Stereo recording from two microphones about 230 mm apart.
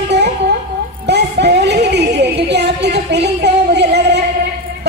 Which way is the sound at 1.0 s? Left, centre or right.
Right.